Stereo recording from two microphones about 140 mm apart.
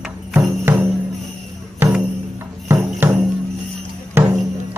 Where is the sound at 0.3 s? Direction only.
10° right (ahead or behind).